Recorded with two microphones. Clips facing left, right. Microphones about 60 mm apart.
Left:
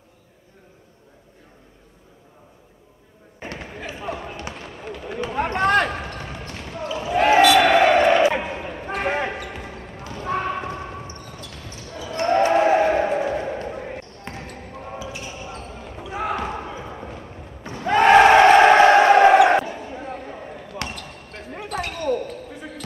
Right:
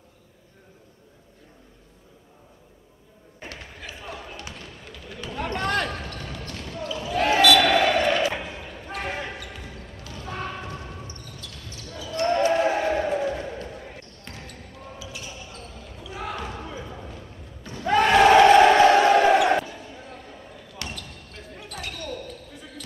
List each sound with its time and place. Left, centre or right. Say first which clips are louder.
3.3 s basketball bounce: left 6 dB; left
8.3 s basketball bounce: left 7 dB; left
18.0 s crowd: left 3 dB; left
22.0 s basketball bounce: left 11 dB; left